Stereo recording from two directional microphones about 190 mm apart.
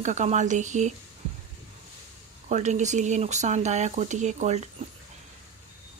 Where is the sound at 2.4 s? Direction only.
40° right (ahead or behind).